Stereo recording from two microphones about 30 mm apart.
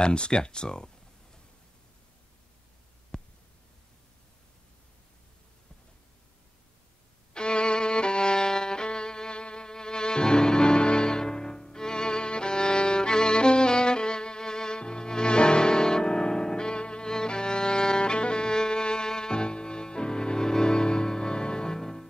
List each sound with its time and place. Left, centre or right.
0.0 s speech: left
3.1 s a sound: left
7.3 s violin: left